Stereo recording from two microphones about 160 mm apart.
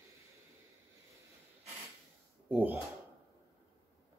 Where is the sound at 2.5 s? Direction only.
10° right (ahead or behind).